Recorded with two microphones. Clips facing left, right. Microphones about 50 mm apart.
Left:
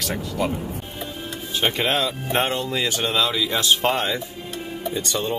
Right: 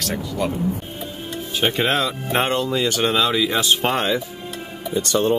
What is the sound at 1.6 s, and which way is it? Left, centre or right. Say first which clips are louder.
Speech: right 2 dB; centre.